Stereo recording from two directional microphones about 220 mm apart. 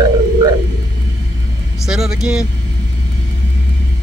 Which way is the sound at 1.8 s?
Centre (ahead or behind).